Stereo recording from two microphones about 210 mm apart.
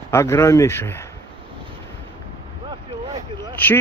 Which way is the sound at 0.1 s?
10° left (ahead or behind).